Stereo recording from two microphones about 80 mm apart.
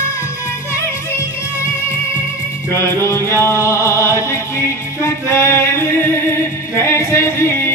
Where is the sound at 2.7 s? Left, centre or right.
Left.